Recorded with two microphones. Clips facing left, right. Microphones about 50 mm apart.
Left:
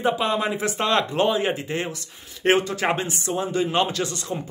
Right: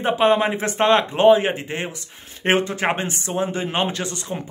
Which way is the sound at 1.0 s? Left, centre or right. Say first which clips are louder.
Right 7 dB; right.